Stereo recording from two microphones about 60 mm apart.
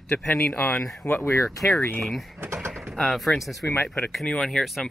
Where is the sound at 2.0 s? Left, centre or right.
Centre.